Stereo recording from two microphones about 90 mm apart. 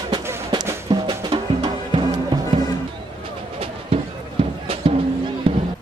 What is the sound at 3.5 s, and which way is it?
Music, 90° right.